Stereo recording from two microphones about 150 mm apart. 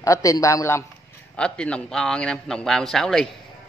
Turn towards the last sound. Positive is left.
turn(degrees=5)  # may be behind; listen again after turning